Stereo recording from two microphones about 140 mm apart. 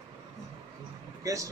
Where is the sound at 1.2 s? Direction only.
25° right (ahead or behind).